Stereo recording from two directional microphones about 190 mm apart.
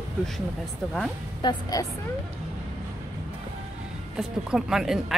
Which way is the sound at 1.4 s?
20° left (ahead or behind).